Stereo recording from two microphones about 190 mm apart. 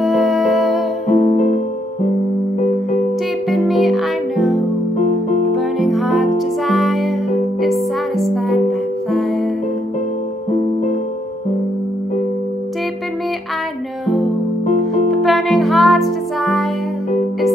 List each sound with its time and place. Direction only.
0.0 s music: centre (ahead or behind)
1.0 s music: 35° left (ahead or behind)
3.4 s music: centre (ahead or behind)
15.0 s music: centre (ahead or behind)